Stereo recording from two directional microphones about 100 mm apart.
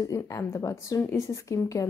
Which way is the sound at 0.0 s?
35° left (ahead or behind).